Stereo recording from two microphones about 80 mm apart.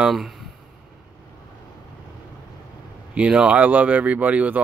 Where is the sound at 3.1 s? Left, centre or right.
Centre.